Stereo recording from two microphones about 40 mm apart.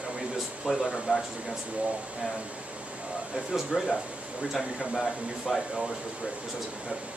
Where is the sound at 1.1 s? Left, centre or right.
Right.